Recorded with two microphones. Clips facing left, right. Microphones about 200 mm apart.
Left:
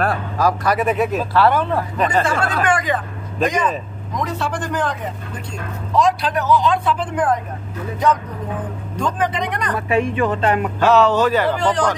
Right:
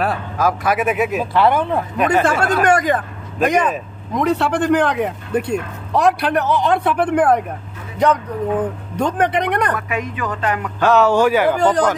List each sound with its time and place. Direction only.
0.0 s speech: centre (ahead or behind)
1.3 s speech: 20° right (ahead or behind)
2.1 s speech: 5° right (ahead or behind)
2.6 s speech: 45° right (ahead or behind)
3.4 s speech: 60° right (ahead or behind)
9.0 s speech: 65° right (ahead or behind)
9.8 s speech: 30° left (ahead or behind)
10.8 s speech: centre (ahead or behind)
11.1 s speech: 10° right (ahead or behind)